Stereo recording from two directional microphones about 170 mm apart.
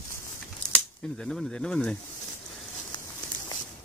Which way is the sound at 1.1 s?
Centre (ahead or behind).